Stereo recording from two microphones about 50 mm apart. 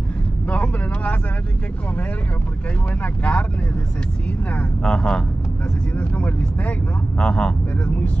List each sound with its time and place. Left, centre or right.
0.5 s speech: left
3.0 s speech: left
4.8 s speech: centre
5.9 s speech: left
7.2 s speech: centre
7.8 s speech: left